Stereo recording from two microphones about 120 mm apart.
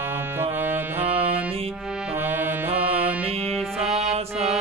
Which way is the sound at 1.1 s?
55° right (ahead or behind).